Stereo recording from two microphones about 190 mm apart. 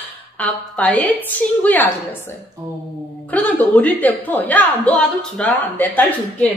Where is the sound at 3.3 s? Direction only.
10° left (ahead or behind).